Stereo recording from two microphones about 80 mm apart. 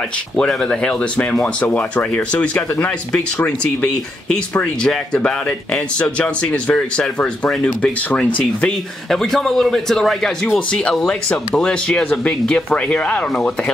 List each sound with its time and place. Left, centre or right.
0.4 s speech: centre
9.1 s a man's voice: centre